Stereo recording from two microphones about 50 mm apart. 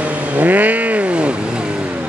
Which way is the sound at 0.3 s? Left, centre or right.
Right.